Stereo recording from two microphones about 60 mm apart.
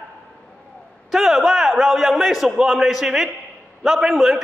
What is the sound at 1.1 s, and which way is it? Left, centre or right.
A man's voice, centre.